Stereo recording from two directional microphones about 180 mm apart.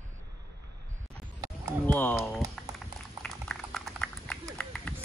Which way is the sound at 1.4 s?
20° right (ahead or behind).